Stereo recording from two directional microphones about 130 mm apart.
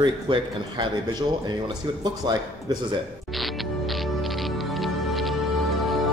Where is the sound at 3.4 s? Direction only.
Centre (ahead or behind).